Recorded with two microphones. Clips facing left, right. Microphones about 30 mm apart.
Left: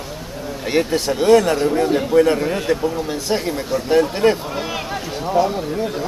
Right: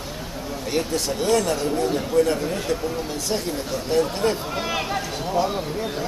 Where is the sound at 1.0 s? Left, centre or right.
Left.